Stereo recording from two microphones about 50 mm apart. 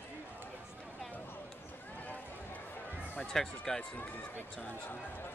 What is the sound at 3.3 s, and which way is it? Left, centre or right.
Speech, centre.